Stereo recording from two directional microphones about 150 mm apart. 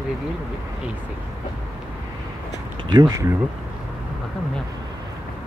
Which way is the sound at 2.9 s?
25° right (ahead or behind).